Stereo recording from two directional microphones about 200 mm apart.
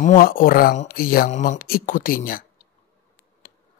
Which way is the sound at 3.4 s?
45° left (ahead or behind).